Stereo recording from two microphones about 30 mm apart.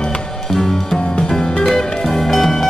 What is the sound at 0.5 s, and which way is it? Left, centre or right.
Music, centre.